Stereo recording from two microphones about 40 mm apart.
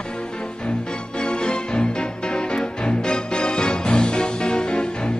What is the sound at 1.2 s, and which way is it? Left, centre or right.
Music, left.